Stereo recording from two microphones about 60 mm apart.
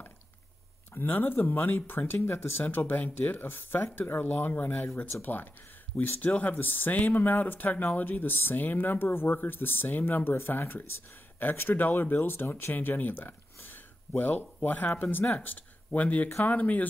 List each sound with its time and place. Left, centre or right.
0.9 s speech: left